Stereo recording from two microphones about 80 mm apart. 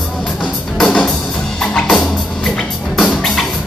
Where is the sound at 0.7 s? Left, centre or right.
Centre.